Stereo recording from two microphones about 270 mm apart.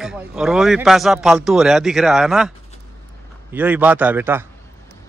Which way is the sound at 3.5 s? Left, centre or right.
Centre.